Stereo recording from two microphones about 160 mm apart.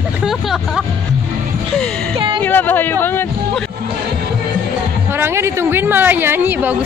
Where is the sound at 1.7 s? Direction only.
5° left (ahead or behind).